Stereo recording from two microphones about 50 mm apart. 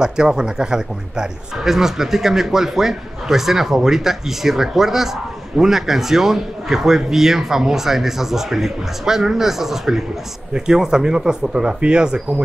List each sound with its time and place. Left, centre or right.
0.0 s speech: centre